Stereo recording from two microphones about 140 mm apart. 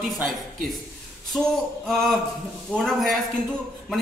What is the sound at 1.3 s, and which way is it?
A man's voice, 5° right (ahead or behind).